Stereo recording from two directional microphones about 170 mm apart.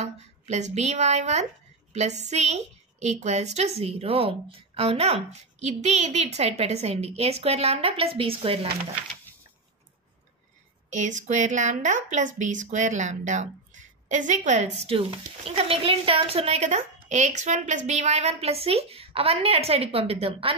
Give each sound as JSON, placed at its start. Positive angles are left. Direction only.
{"t": 0.0, "sound": "a woman's voice", "side_deg": -40}
{"t": 10.9, "sound": "a woman's voice", "side_deg": -45}